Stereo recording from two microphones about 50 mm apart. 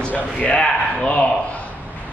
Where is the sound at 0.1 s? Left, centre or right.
Left.